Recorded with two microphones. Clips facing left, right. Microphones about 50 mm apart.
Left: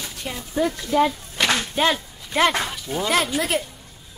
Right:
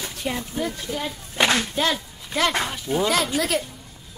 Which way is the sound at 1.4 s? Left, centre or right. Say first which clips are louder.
Right 1 dB; right.